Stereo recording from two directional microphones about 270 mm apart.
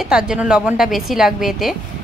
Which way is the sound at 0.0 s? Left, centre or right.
Centre.